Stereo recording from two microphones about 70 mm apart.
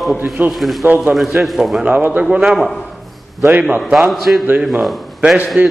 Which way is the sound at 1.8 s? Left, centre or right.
Right.